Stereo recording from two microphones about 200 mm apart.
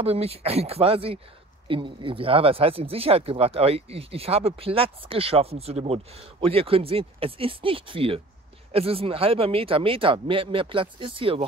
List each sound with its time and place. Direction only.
0.0 s speech: 30° right (ahead or behind)